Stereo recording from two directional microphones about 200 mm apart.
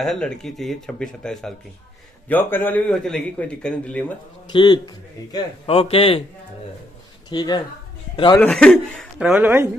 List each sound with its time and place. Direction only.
0.0 s a man's voice: centre (ahead or behind)
4.5 s a man's voice: 25° left (ahead or behind)
7.2 s a man's voice: 20° left (ahead or behind)
8.4 s speech: 5° left (ahead or behind)
9.2 s speech: 10° right (ahead or behind)